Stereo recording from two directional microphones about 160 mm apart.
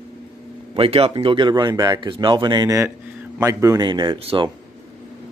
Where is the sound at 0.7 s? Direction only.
35° right (ahead or behind).